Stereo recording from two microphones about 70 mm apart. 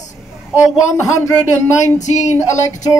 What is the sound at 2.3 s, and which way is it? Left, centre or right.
Speech, left.